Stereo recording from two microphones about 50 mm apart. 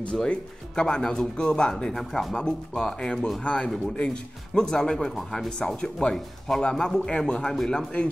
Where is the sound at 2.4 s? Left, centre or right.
Centre.